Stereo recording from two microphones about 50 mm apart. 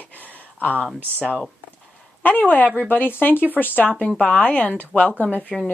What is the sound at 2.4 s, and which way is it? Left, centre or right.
Speech, left.